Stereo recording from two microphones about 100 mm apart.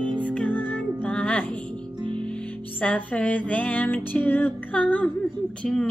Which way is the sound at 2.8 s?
15° left (ahead or behind).